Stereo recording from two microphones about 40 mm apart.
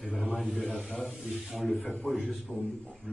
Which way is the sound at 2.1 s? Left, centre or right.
Centre.